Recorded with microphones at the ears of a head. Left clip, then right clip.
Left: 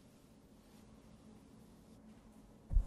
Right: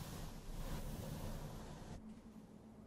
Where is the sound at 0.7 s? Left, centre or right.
Right.